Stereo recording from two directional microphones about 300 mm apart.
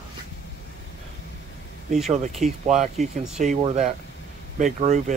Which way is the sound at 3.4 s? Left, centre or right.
Right.